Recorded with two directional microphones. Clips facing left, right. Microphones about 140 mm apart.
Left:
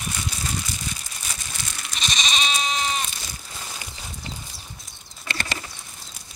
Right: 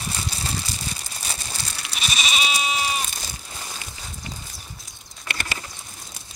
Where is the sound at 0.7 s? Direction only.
30° right (ahead or behind).